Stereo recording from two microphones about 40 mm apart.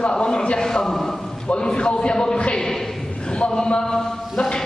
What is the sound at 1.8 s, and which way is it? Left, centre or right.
Speech, left.